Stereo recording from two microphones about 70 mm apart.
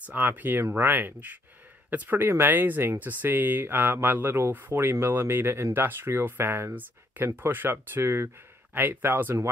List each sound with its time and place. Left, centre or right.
0.0 s speech: right